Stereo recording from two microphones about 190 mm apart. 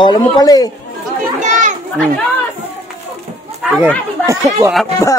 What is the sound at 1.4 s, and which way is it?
Children playing, 40° right (ahead or behind).